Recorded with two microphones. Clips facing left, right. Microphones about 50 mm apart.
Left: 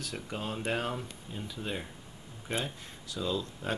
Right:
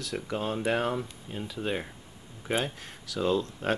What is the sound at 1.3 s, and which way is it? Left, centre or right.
Speech, right.